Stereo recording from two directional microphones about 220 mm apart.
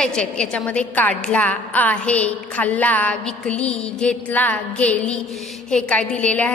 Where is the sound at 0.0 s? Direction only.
5° left (ahead or behind).